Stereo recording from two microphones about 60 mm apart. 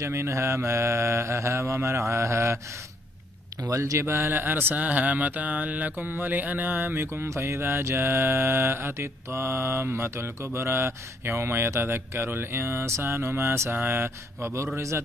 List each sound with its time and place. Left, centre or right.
0.0 s mantra: right
3.7 s speech: right
4.0 s mantra: right
4.3 s mantra: right
7.2 s mantra: right